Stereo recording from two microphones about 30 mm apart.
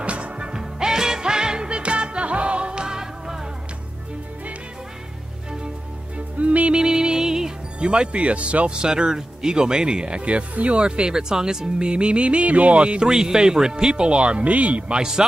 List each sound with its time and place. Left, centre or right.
0.0 s music: right
0.5 s music: right
6.1 s music: right
6.7 s music: right
7.8 s speech: right
8.6 s speech: right
10.8 s speech: right
13.0 s speech: right
14.5 s speech: right